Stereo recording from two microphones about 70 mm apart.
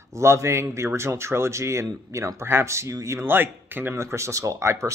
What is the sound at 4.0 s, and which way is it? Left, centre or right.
Speech, right.